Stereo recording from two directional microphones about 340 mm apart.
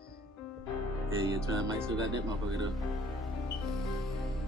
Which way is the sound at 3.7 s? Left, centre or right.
Centre.